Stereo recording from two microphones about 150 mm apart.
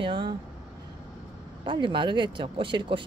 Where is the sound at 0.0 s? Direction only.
30° right (ahead or behind).